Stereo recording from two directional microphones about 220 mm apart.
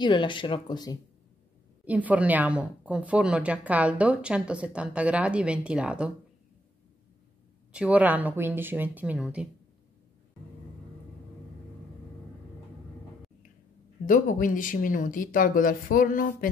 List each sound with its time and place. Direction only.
0.0 s speech: 20° left (ahead or behind)
1.9 s a woman's voice: 5° right (ahead or behind)
7.7 s speech: 5° right (ahead or behind)
14.0 s speech: 35° left (ahead or behind)